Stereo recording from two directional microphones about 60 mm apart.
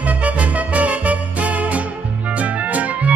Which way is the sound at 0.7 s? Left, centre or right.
Right.